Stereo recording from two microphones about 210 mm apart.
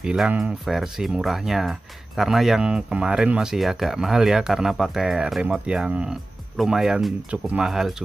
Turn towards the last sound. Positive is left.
turn(degrees=0)  # may be behind; listen again after turning